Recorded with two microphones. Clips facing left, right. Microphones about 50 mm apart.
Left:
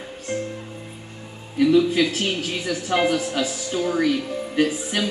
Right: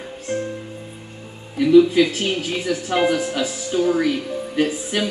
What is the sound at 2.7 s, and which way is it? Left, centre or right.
Speech, centre.